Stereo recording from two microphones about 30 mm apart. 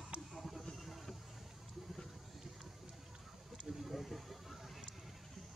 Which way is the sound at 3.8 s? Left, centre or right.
Centre.